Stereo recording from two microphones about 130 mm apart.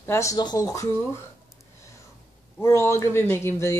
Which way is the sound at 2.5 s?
20° left (ahead or behind).